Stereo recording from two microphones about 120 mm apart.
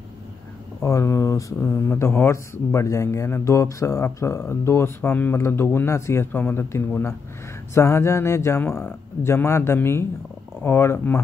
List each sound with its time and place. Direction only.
0.7 s speech: 25° left (ahead or behind)